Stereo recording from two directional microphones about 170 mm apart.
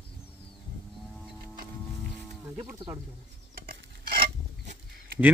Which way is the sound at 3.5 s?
60° right (ahead or behind).